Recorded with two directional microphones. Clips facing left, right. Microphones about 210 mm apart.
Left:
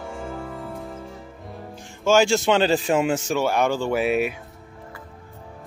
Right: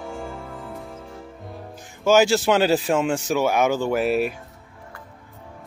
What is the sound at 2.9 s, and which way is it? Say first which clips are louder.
Speech: even; 5° left (ahead or behind).